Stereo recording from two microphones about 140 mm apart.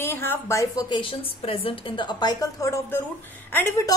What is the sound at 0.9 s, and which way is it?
A woman's voice, 40° left (ahead or behind).